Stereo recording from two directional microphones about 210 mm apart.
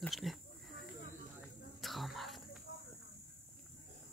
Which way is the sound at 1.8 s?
Centre (ahead or behind).